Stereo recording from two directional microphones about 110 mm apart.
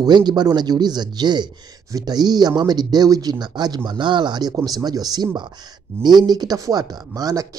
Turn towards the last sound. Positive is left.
turn(degrees=-35)  # may be behind; listen again after turning